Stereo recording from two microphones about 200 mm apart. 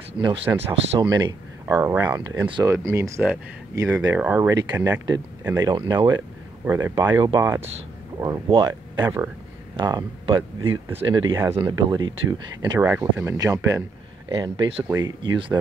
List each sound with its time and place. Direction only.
0.2 s speech: 25° right (ahead or behind)
1.7 s speech: 10° right (ahead or behind)